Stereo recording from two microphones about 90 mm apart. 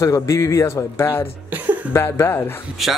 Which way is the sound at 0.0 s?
35° left (ahead or behind).